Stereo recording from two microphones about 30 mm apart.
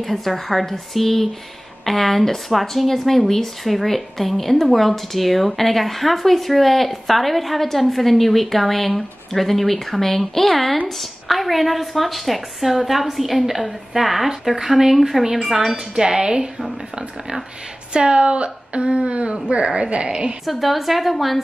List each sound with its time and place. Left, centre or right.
0.0 s speech: centre
16.1 s a woman's voice: centre
17.9 s speech: right
20.4 s speech: centre